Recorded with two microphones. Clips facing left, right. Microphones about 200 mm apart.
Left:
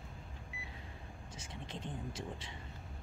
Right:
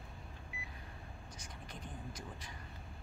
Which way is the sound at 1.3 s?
25° left (ahead or behind).